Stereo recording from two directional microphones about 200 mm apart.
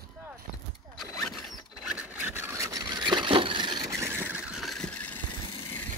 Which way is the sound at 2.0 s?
10° right (ahead or behind).